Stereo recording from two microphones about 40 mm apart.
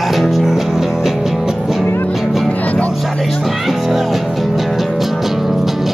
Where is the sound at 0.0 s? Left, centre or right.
Centre.